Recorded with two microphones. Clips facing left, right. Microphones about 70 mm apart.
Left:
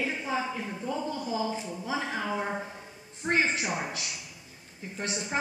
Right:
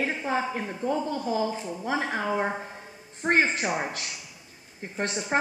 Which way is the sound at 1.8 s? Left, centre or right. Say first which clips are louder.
Right 6 dB; right.